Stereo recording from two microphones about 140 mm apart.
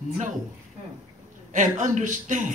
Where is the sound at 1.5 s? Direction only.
60° right (ahead or behind).